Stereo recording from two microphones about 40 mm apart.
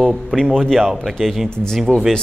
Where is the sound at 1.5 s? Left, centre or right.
Centre.